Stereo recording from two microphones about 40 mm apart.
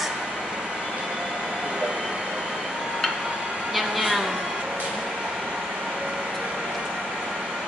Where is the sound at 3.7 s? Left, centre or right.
Centre.